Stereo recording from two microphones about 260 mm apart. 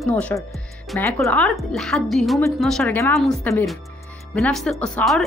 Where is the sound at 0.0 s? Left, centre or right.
Centre.